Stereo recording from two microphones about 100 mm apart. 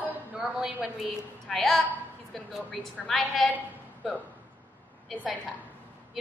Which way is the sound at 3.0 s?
5° left (ahead or behind).